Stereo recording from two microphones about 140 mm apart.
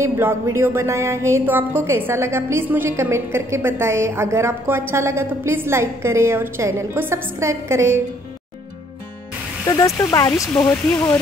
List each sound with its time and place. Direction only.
0.0 s a woman's voice: 15° right (ahead or behind)
9.7 s speech: 25° left (ahead or behind)